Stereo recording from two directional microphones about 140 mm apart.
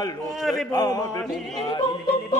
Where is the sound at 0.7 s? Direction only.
25° left (ahead or behind).